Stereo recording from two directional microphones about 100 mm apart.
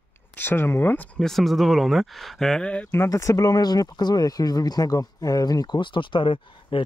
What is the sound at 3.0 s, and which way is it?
Speech, 30° left (ahead or behind).